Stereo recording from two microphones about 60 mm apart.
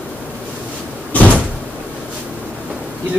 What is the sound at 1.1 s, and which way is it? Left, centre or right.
Door, left.